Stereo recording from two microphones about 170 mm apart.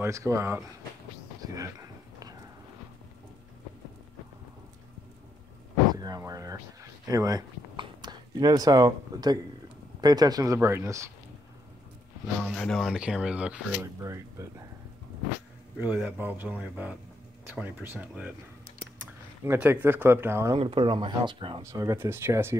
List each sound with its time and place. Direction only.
0.0 s speech: 15° right (ahead or behind)
1.4 s a sound: 20° right (ahead or behind)
5.9 s a sound: 25° right (ahead or behind)
9.9 s speech: 25° right (ahead or behind)
12.4 s speech: 5° left (ahead or behind)
14.0 s speech: 20° right (ahead or behind)
15.8 s speech: 10° right (ahead or behind)
19.4 s speech: 15° right (ahead or behind)
20.5 s speech: 30° right (ahead or behind)
21.6 s speech: 20° right (ahead or behind)